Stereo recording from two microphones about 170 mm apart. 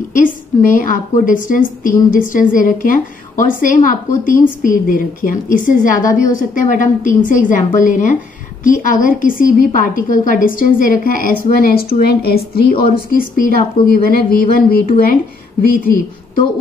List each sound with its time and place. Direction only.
0.1 s a woman's voice: 50° left (ahead or behind)